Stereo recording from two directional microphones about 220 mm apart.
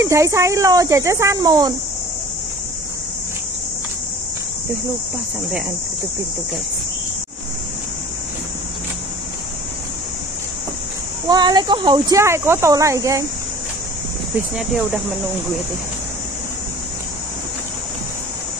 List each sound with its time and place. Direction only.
0.0 s speech: 15° right (ahead or behind)
11.2 s speech: 20° right (ahead or behind)